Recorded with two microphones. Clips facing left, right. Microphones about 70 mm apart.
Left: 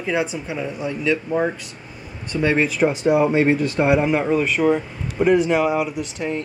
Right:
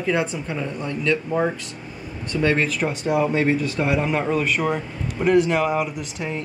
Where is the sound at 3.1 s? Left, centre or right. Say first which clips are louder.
Left 1 dB; left.